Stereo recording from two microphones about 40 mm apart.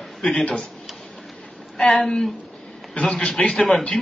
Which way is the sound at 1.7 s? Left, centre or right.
Centre.